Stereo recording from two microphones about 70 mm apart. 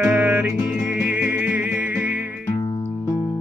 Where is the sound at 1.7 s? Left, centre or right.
Right.